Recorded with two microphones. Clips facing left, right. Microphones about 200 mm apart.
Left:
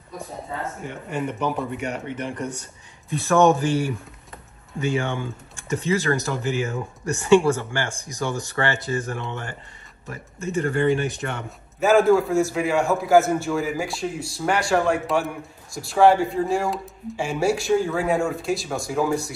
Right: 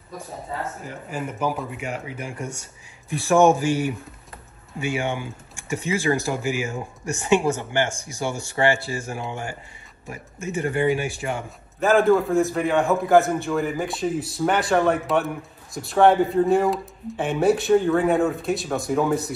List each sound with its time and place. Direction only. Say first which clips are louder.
0.8 s a man's voice: left 3 dB; 5° right (ahead or behind)
2.3 s speech: left 3 dB; 35° left (ahead or behind)
3.3 s a man's voice: right 1 dB; 15° right (ahead or behind)